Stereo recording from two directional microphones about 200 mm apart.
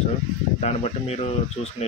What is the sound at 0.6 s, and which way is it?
Speech, 30° left (ahead or behind).